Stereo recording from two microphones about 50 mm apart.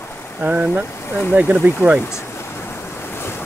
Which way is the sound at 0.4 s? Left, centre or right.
Right.